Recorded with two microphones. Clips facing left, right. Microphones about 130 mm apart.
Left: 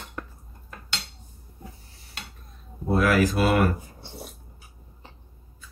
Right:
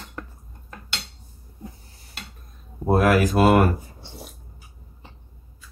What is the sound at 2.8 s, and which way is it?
Speech, 50° right (ahead or behind).